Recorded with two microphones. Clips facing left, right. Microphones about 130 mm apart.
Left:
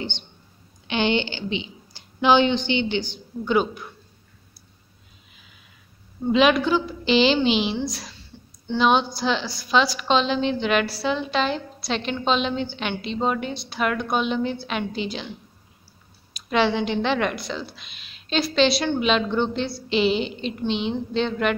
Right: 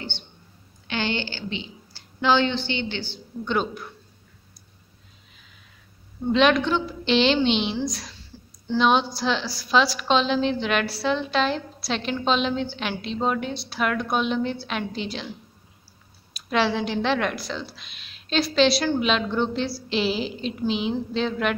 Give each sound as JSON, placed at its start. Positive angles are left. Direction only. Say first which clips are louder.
{"t": 0.8, "sound": "a woman's voice", "louder": "left 5 dB", "side_deg": 20}
{"t": 3.5, "sound": "a woman's voice", "louder": "left 4 dB", "side_deg": 0}
{"t": 6.2, "sound": "a woman's voice", "louder": "left 1 dB", "side_deg": 5}
{"t": 16.4, "sound": "a woman's voice", "louder": "left 2 dB", "side_deg": 0}